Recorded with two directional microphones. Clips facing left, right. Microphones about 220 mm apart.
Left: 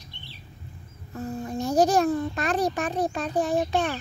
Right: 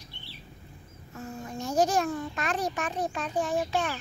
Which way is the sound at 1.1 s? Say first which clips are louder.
Left 7 dB; 35° left (ahead or behind).